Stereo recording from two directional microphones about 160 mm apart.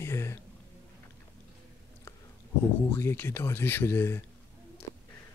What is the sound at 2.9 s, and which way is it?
Speech, 15° left (ahead or behind).